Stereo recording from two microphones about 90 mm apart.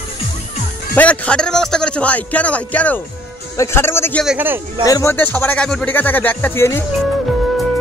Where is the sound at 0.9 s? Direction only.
15° left (ahead or behind).